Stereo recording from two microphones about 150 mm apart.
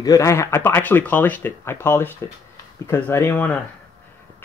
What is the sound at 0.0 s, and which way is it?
Speech, 20° left (ahead or behind).